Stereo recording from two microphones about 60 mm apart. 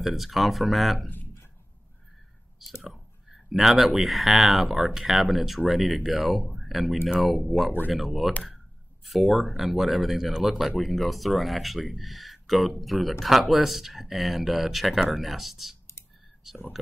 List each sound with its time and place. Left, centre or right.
0.0 s speech: centre
1.0 s a sound: left
2.8 s speech: centre